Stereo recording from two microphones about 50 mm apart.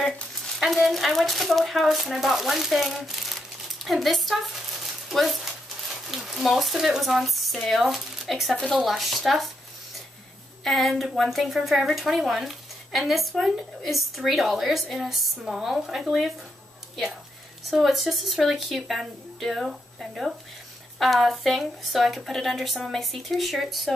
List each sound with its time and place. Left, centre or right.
0.6 s speech: centre
10.6 s speech: centre
17.6 s speech: centre